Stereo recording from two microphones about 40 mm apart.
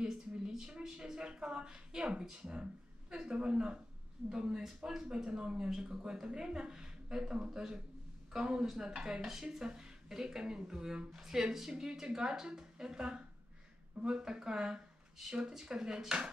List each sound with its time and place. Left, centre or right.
0.5 s a sound: centre
0.7 s a woman's voice: centre
5.1 s a woman's voice: right